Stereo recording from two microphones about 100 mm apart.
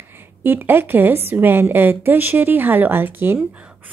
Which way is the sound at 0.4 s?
20° right (ahead or behind).